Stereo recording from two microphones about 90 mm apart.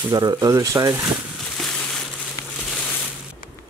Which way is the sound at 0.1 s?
45° right (ahead or behind).